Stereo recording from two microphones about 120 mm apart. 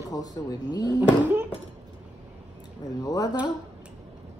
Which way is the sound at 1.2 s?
15° right (ahead or behind).